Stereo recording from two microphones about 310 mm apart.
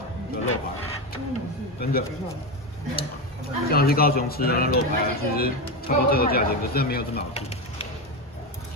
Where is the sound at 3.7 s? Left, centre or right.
Left.